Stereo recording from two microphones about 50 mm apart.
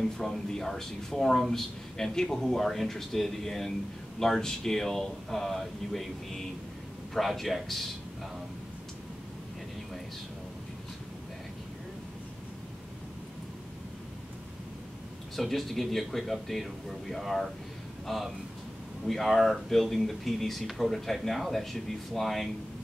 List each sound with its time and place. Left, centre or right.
0.0 s speech: centre
15.3 s speech: centre